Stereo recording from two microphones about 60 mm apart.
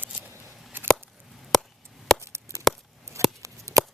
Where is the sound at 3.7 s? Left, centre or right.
Right.